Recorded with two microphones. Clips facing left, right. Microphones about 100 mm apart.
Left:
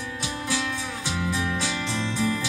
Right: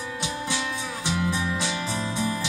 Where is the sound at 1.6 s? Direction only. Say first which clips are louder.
Even; 20° right (ahead or behind).